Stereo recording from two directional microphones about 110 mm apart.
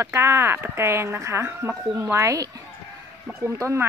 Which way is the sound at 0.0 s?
25° right (ahead or behind).